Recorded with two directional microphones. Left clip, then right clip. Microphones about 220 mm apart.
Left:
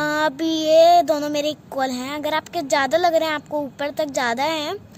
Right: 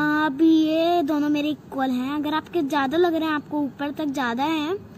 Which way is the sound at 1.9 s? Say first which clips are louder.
Left 2 dB; 50° left (ahead or behind).